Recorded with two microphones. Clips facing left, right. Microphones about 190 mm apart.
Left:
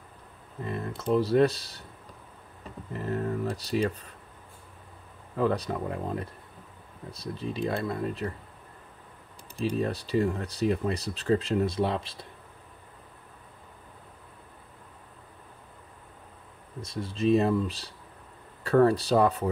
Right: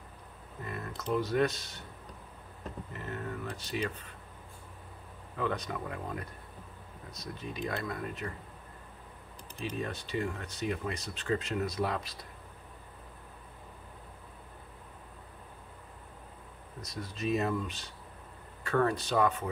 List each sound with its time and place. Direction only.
0.7 s speech: 30° left (ahead or behind)
3.0 s speech: 35° left (ahead or behind)
5.4 s speech: 35° left (ahead or behind)
9.6 s speech: 35° left (ahead or behind)
16.8 s speech: 30° left (ahead or behind)